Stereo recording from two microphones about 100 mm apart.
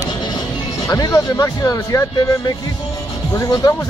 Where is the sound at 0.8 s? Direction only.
35° left (ahead or behind).